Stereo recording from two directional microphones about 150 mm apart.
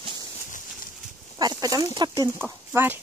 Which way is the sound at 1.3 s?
25° right (ahead or behind).